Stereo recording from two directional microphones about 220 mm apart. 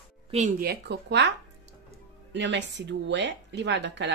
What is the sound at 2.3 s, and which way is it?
Speech, 55° right (ahead or behind).